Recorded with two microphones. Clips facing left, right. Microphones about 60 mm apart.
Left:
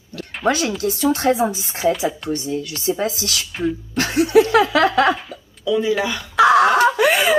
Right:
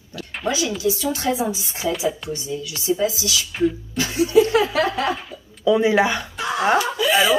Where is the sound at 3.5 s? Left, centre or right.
Centre.